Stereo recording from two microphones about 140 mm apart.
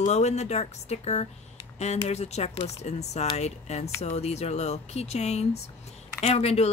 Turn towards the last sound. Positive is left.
turn(degrees=50)  # may be behind; listen again after turning